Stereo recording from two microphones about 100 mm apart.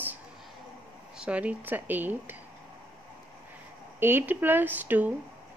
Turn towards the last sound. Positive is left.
turn(degrees=-15)  # may be behind; listen again after turning